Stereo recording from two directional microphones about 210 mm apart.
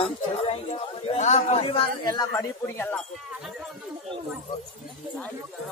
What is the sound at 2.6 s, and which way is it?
Wind chime, 10° left (ahead or behind).